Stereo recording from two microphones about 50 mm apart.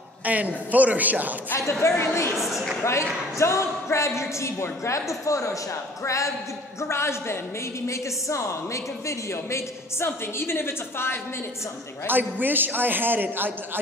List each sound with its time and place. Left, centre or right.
0.2 s a man's voice: right
1.7 s speech: left
2.3 s a woman's voice: centre
2.8 s a man's voice: left
6.8 s a man's voice: left
7.8 s a woman's voice: left
10.0 s a woman's voice: left
12.1 s a man's voice: right